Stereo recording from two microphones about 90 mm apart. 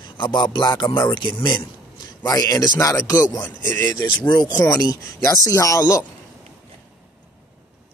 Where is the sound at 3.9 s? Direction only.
60° left (ahead or behind).